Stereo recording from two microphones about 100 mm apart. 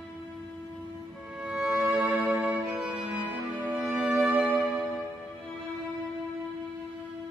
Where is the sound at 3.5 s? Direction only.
25° right (ahead or behind).